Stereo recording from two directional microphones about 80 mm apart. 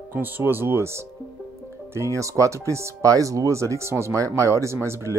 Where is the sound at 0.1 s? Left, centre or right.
Right.